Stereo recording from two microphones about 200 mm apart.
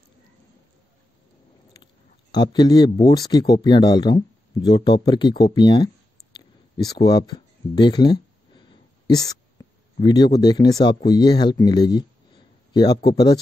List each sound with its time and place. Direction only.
2.3 s speech: 20° left (ahead or behind)
6.3 s a sound: 20° left (ahead or behind)
9.9 s speech: 20° left (ahead or behind)